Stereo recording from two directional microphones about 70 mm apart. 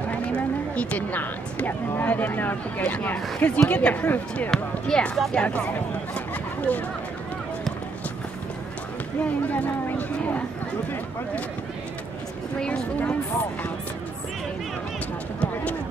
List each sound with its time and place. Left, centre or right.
0.3 s speech: centre
4.5 s speech: centre
5.4 s speech: left
9.2 s speech: left
12.5 s speech: centre